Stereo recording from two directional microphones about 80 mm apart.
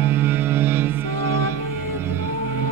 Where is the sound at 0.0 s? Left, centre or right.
Right.